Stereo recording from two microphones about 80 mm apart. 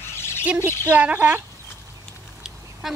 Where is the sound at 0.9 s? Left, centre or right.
Centre.